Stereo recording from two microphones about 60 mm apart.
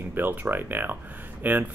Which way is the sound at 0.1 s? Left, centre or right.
Right.